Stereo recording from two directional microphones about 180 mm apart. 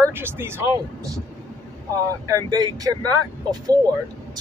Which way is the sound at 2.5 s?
20° right (ahead or behind).